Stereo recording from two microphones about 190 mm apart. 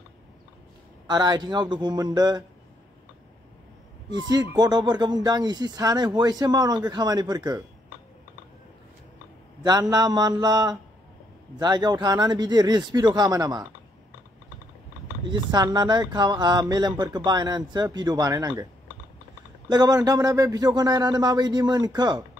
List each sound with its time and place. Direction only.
1.0 s speech: 20° right (ahead or behind)
4.3 s speech: 20° right (ahead or behind)
9.6 s speech: 20° right (ahead or behind)
15.2 s speech: 25° right (ahead or behind)
19.7 s speech: 20° right (ahead or behind)